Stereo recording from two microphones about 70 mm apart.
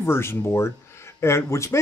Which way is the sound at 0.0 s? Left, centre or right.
Left.